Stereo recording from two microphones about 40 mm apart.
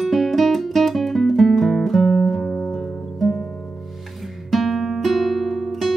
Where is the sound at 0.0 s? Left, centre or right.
Centre.